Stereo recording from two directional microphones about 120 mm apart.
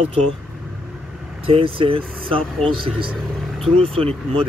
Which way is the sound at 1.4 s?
50° right (ahead or behind).